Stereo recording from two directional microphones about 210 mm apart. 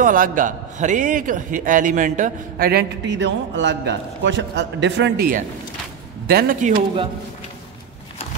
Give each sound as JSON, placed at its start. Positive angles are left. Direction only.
{"t": 0.0, "sound": "a man's voice", "side_deg": -40}